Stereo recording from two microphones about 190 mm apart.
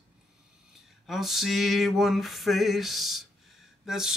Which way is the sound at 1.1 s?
Centre (ahead or behind).